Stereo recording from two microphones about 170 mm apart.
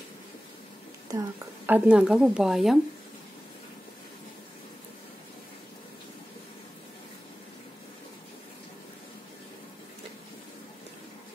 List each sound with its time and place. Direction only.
1.1 s speech: 20° right (ahead or behind)
1.7 s speech: 5° right (ahead or behind)